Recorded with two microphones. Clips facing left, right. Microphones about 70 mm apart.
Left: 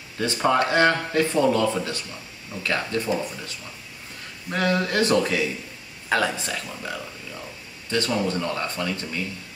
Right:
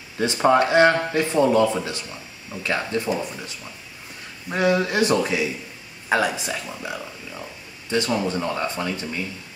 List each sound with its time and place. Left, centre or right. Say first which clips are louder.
0.2 s speech: right 3 dB; right